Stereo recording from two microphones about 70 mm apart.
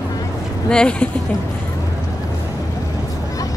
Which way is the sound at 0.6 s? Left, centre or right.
Centre.